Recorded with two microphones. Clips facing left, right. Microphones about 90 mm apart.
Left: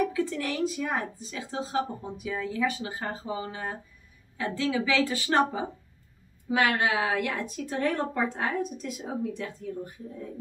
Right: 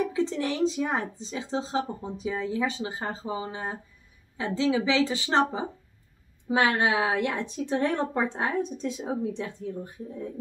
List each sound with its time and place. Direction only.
0.0 s speech: 25° right (ahead or behind)